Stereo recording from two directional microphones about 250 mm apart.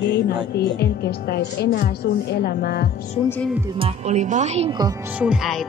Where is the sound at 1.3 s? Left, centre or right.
Left.